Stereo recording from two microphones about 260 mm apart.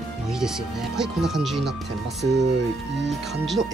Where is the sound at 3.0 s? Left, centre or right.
Centre.